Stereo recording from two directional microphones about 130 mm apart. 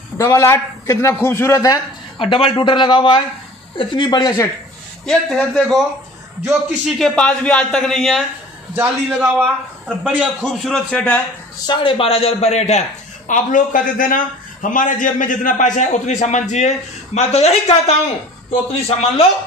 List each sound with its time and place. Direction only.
0.2 s a man's voice: 20° left (ahead or behind)
2.1 s a man's voice: 45° left (ahead or behind)
5.0 s a man's voice: 5° left (ahead or behind)
8.7 s a man's voice: 10° right (ahead or behind)
10.4 s a man's voice: 5° left (ahead or behind)
11.6 s a man's voice: 40° left (ahead or behind); by 12.8 s 60° left (ahead or behind)
13.3 s a man's voice: 90° left; by 19.2 s 50° left (ahead or behind)